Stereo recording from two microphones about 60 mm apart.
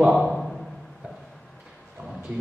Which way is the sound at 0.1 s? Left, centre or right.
Centre.